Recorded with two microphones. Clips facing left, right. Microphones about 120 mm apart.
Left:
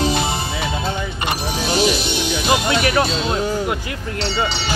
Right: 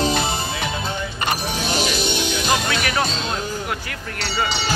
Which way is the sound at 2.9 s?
5° left (ahead or behind).